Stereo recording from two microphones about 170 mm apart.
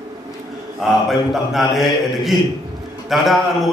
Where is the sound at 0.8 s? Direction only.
Centre (ahead or behind).